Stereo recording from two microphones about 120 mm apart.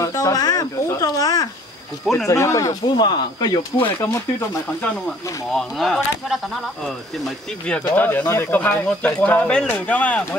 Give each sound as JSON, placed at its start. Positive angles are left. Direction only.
{"t": 0.0, "sound": "a sound", "side_deg": 30}
{"t": 2.2, "sound": "speech", "side_deg": 25}
{"t": 5.5, "sound": "speech", "side_deg": 5}
{"t": 7.9, "sound": "speech", "side_deg": 15}